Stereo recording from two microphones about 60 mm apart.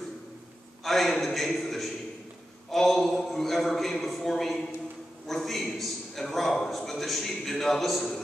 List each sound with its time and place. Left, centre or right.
0.8 s a man's voice: centre